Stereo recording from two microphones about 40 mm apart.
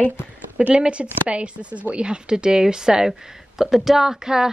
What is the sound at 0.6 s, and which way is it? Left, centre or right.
Speech, right.